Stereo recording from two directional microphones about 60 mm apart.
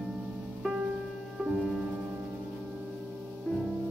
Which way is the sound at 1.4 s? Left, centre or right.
Centre.